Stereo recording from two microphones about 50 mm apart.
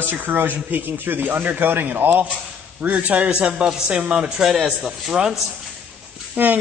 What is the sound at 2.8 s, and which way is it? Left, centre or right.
A man's voice, right.